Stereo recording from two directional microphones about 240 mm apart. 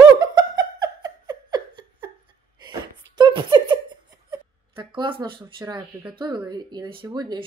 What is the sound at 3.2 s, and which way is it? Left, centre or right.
Beatboxing, centre.